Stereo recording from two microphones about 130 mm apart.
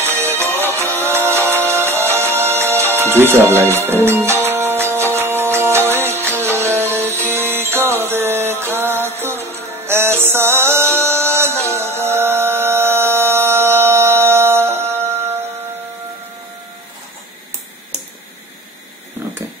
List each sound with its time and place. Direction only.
0.0 s music: 20° right (ahead or behind)